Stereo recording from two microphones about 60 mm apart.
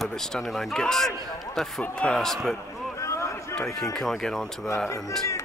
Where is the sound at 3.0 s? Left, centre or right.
Left.